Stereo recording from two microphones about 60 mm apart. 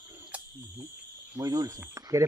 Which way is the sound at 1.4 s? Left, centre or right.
Right.